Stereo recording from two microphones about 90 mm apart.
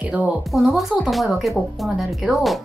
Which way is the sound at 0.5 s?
Centre (ahead or behind).